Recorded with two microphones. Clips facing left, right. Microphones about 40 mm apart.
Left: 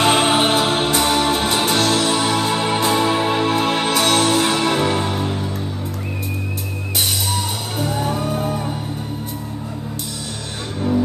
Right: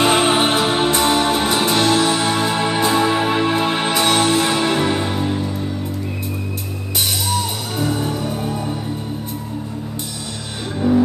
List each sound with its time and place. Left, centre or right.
0.0 s music: centre
0.7 s music: centre
1.7 s music: right
4.3 s music: centre
4.7 s music: centre
7.9 s music: left
10.8 s music: centre